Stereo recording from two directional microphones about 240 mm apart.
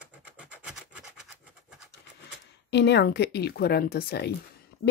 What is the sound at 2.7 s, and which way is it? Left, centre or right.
Speech, left.